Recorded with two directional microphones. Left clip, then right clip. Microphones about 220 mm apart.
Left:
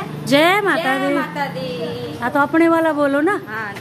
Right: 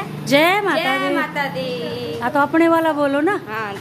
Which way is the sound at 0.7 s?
15° right (ahead or behind).